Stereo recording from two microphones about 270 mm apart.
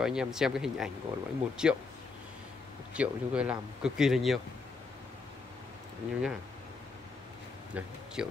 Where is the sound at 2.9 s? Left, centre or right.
Centre.